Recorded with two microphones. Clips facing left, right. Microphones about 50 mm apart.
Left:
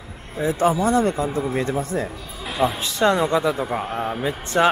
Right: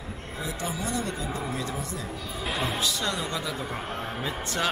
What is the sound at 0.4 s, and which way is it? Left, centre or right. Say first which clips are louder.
Speech: left 14 dB; left.